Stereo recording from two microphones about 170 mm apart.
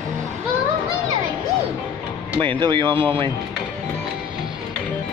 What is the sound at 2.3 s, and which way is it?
Speech, 30° right (ahead or behind).